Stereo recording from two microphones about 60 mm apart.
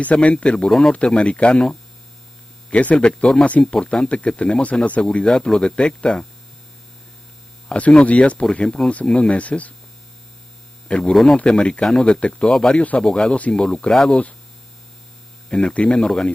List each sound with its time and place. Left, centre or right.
0.0 s speech: left
0.7 s speech: centre
0.9 s speech: centre
2.7 s speech: left
7.6 s speech: centre
10.9 s speech: centre
15.5 s speech: centre